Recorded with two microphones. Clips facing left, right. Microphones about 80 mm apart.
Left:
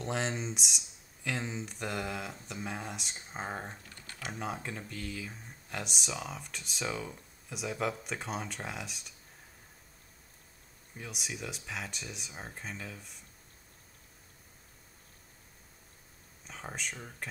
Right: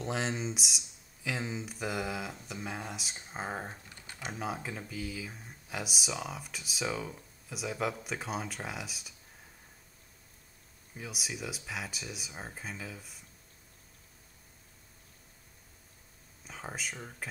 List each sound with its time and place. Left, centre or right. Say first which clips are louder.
0.0 s speech: even; centre
3.8 s typing: even; centre
4.4 s speech: right 1 dB; centre
11.0 s speech: right 1 dB; centre
16.4 s speech: right 1 dB; centre